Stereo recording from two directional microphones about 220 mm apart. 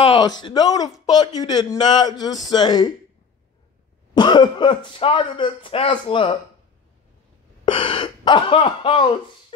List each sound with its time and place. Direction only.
0.0 s a sound: 30° left (ahead or behind)
0.3 s a man's voice: 20° left (ahead or behind)
4.1 s speech: 20° left (ahead or behind)
7.6 s speech: 25° left (ahead or behind)